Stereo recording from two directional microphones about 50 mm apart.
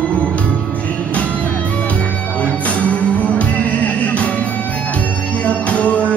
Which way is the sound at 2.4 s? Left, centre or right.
Left.